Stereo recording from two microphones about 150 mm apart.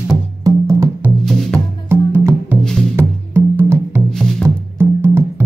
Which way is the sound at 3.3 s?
10° right (ahead or behind).